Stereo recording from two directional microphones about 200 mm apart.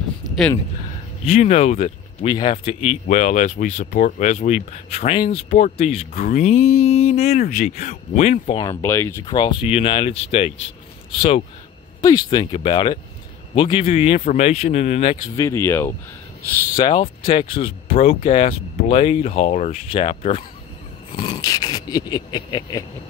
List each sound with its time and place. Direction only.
1.2 s speech: 30° left (ahead or behind)
8.8 s speech: 10° left (ahead or behind)
9.2 s speech: 25° left (ahead or behind)
12.0 s speech: 20° left (ahead or behind); by 15.1 s 35° left (ahead or behind)
15.3 s speech: 15° left (ahead or behind)
16.7 s speech: 25° left (ahead or behind)
21.2 s speech: 20° left (ahead or behind)